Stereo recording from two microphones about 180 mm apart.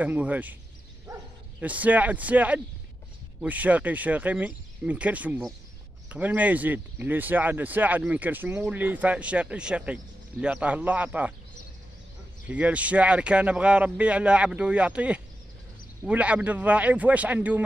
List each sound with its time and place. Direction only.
0.0 s speech: 10° right (ahead or behind)
1.1 s bow-wow: 15° right (ahead or behind)
1.6 s speech: 10° right (ahead or behind)
12.4 s speech: 10° right (ahead or behind)